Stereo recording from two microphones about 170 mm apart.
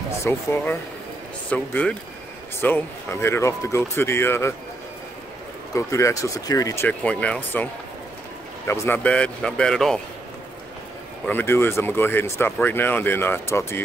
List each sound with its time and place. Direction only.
0.2 s speech: 15° left (ahead or behind)
5.8 s speech: 15° left (ahead or behind)
11.2 s speech: 15° left (ahead or behind)